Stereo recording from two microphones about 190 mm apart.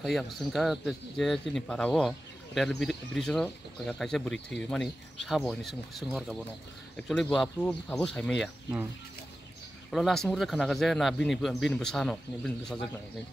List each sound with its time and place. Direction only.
0.0 s speech: centre (ahead or behind)
9.8 s speech: centre (ahead or behind)